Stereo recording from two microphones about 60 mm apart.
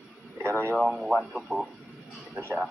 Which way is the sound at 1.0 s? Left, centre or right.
Centre.